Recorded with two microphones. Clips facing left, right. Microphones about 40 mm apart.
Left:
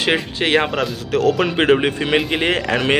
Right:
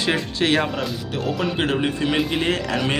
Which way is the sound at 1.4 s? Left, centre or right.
Left.